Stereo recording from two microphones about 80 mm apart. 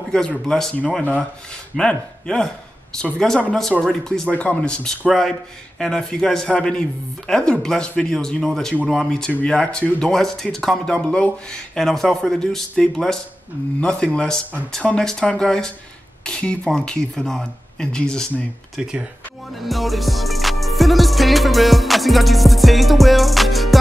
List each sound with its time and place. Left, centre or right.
0.5 s speech: centre
0.7 s speech: centre
18.8 s speech: centre
19.5 s music: centre